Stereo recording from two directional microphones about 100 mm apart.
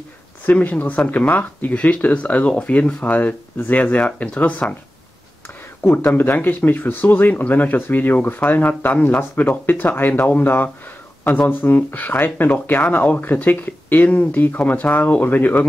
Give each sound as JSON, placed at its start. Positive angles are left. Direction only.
{"t": 0.5, "sound": "speech", "side_deg": 15}
{"t": 5.8, "sound": "speech", "side_deg": 20}